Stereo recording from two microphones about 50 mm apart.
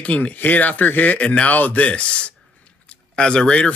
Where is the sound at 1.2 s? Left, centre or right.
Left.